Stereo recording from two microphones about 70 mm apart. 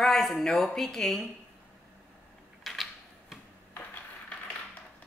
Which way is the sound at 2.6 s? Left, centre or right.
Centre.